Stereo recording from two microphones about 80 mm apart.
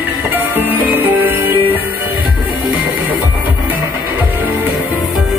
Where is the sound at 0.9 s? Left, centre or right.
Right.